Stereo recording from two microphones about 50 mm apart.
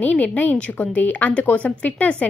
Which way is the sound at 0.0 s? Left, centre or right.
Left.